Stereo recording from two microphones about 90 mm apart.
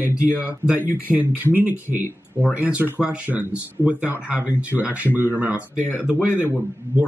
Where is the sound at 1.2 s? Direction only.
20° right (ahead or behind).